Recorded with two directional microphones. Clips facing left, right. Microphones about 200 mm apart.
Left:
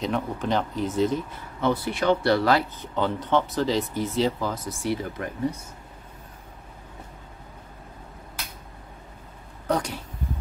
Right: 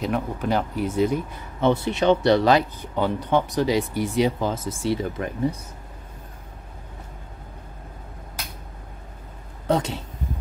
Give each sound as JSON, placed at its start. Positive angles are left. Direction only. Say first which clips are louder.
{"t": 0.0, "sound": "speech", "louder": "right 2 dB", "side_deg": -10}
{"t": 1.6, "sound": "speech", "louder": "right 4 dB", "side_deg": -25}
{"t": 9.7, "sound": "speech", "louder": "right 3 dB", "side_deg": -25}